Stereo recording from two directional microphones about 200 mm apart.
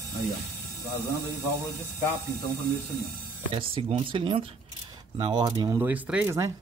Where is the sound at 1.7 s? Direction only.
15° right (ahead or behind).